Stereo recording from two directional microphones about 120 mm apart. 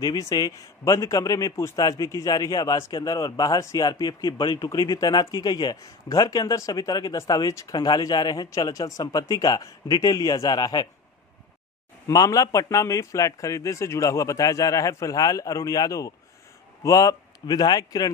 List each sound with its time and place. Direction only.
0.0 s speech: 30° left (ahead or behind)
12.1 s a man's voice: 30° left (ahead or behind)